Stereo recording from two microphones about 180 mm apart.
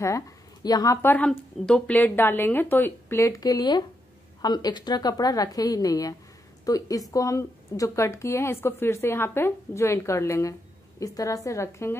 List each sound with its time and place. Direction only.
0.7 s a woman's voice: 20° left (ahead or behind)